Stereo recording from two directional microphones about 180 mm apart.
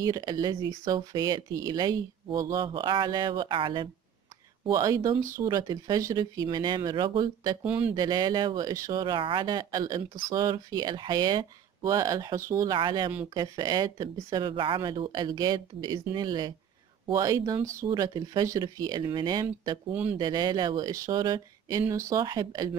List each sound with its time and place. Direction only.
0.0 s speech: 20° right (ahead or behind)
7.6 s speech: 10° right (ahead or behind)
7.9 s speech: 25° right (ahead or behind)
19.9 s speech: 10° right (ahead or behind)
20.2 s speech: 25° right (ahead or behind)